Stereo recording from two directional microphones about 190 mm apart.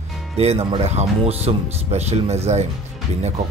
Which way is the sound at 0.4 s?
35° right (ahead or behind).